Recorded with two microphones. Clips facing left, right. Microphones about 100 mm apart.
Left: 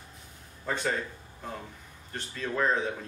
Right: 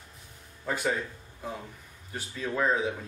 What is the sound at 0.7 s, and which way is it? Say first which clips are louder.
Speech: right 1 dB; 5° right (ahead or behind).